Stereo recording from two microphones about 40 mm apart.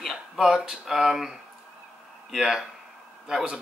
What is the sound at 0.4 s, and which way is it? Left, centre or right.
Speech, centre.